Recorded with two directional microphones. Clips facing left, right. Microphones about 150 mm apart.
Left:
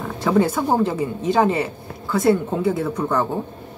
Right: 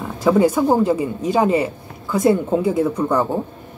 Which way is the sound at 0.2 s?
10° right (ahead or behind).